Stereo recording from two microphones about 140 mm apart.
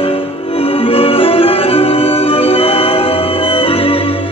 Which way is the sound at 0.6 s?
40° left (ahead or behind).